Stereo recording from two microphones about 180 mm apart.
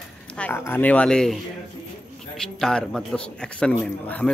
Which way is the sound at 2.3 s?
Centre (ahead or behind).